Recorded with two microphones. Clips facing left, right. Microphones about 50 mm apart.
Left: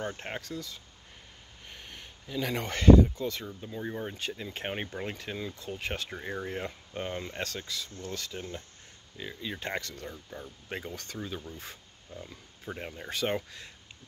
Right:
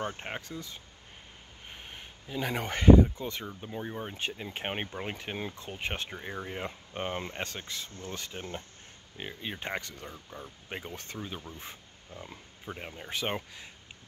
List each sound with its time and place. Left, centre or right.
0.1 s speech: centre
0.4 s speech: right
4.0 s speech: centre
6.0 s speech: centre
6.9 s speech: right
12.6 s speech: centre
13.1 s speech: centre